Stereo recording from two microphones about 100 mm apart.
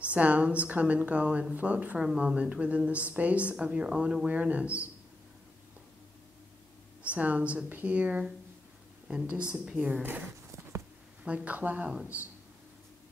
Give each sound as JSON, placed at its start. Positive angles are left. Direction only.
{"t": 0.1, "sound": "speech", "side_deg": -15}
{"t": 7.0, "sound": "speech", "side_deg": -15}